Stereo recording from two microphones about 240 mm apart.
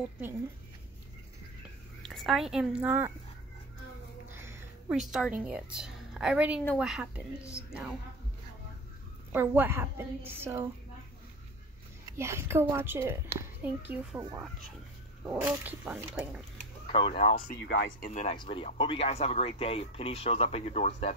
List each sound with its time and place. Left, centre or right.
2.0 s a woman's voice: centre
4.3 s a woman's voice: centre
9.3 s a woman's voice: centre
12.1 s a woman's voice: centre
16.9 s speech: left
17.5 s speech: left
18.1 s speech: left